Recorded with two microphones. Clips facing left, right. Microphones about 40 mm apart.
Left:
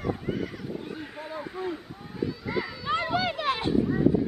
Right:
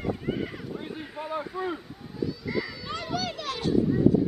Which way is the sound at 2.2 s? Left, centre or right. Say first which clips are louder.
Even; left.